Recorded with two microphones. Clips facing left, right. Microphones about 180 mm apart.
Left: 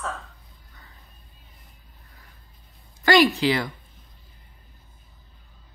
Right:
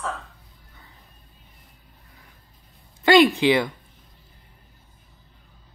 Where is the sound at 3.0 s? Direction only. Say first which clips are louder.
Right 3 dB; 25° right (ahead or behind).